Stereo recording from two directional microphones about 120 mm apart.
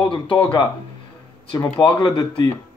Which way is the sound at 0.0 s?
45° left (ahead or behind).